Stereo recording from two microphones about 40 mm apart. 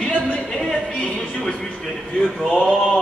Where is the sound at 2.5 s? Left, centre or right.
Centre.